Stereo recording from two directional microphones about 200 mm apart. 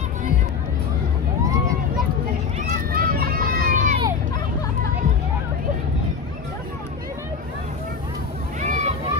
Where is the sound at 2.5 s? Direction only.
40° right (ahead or behind).